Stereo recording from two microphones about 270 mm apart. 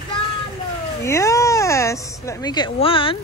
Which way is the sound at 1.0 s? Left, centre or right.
Centre.